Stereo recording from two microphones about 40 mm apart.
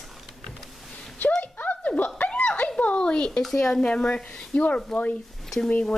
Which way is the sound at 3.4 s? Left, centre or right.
Centre.